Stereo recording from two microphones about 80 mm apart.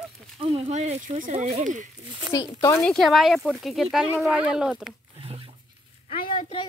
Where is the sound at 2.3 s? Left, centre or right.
Left.